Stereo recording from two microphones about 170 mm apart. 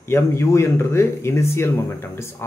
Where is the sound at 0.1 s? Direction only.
15° left (ahead or behind).